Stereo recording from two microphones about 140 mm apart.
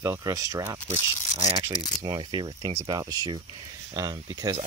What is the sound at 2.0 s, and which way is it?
Speech, 35° right (ahead or behind).